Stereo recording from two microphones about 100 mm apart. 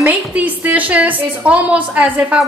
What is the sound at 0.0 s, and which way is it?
A woman's voice, 15° right (ahead or behind).